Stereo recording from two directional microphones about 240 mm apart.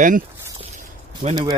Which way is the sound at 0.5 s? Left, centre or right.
Right.